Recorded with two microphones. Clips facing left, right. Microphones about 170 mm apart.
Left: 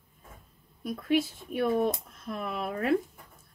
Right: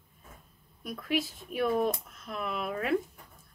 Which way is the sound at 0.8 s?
25° left (ahead or behind).